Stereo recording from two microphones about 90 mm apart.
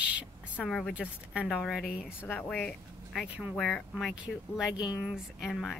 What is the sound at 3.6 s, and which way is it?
Speech, centre (ahead or behind).